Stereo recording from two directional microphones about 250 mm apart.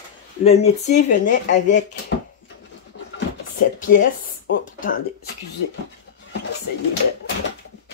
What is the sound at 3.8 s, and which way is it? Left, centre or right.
Speech, left.